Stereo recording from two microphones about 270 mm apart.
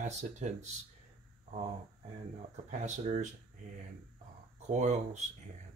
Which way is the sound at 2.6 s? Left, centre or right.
Right.